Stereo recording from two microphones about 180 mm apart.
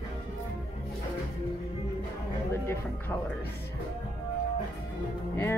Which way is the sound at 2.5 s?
15° left (ahead or behind).